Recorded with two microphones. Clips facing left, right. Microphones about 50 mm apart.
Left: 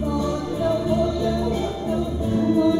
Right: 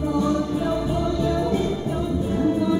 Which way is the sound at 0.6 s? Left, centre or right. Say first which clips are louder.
Left 3 dB; centre.